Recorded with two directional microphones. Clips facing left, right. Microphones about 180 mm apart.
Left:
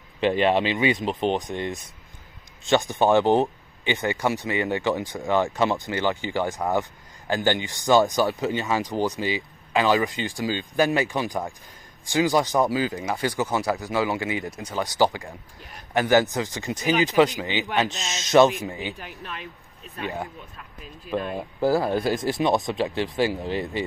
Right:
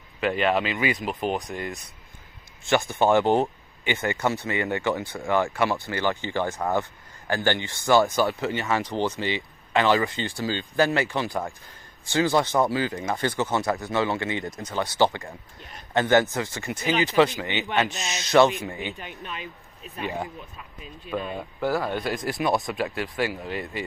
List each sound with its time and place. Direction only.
0.2 s speech: 30° left (ahead or behind)
1.3 s speech: centre (ahead or behind)
2.6 s speech: 15° left (ahead or behind)
18.9 s speech: centre (ahead or behind)
21.5 s speech: 35° left (ahead or behind)